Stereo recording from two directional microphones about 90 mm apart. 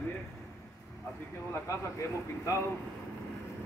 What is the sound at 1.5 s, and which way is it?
Speech, 35° left (ahead or behind).